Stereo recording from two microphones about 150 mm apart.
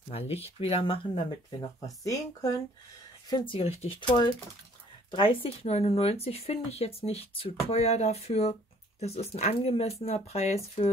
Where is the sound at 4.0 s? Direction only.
30° left (ahead or behind).